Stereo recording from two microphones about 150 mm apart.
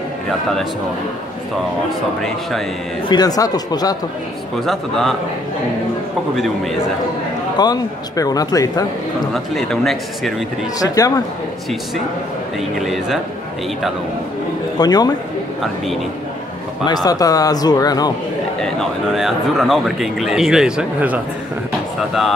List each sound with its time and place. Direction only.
3.1 s speech: 25° left (ahead or behind)
4.6 s a man's voice: centre (ahead or behind)
6.3 s a man's voice: centre (ahead or behind)
7.5 s speech: 25° left (ahead or behind)
9.3 s a man's voice: centre (ahead or behind)
10.8 s speech: 25° left (ahead or behind)
12.8 s a man's voice: centre (ahead or behind)
14.8 s speech: 25° left (ahead or behind)
16.8 s speech: 25° left (ahead or behind)
18.6 s a man's voice: centre (ahead or behind)